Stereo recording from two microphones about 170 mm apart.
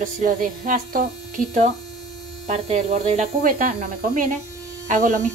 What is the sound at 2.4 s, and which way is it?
A woman's voice, 40° right (ahead or behind).